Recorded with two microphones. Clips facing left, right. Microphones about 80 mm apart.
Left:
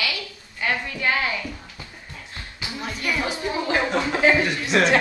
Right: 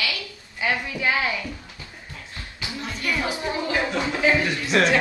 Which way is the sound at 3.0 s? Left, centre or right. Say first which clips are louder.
Even; centre.